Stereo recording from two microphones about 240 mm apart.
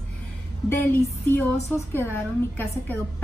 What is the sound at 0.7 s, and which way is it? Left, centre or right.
A woman's voice, centre.